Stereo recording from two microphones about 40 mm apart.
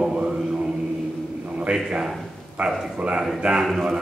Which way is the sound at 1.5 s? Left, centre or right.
Right.